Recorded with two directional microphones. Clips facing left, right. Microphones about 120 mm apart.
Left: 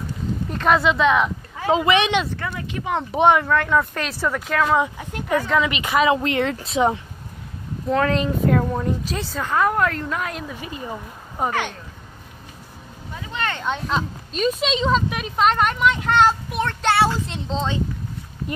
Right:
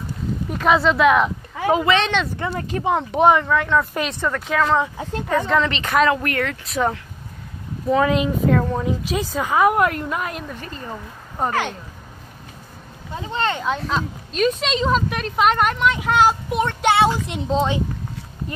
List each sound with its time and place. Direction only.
0.5 s a woman's voice: 5° right (ahead or behind)
1.7 s speech: 15° left (ahead or behind)
2.5 s speech: 40° right (ahead or behind)
3.0 s a woman's voice: centre (ahead or behind)
6.1 s speech: 20° left (ahead or behind)
7.9 s speech: 10° right (ahead or behind)
8.5 s a woman's voice: centre (ahead or behind)
13.1 s speech: 30° right (ahead or behind)
13.6 s a woman's voice: centre (ahead or behind)
16.4 s speech: 15° right (ahead or behind)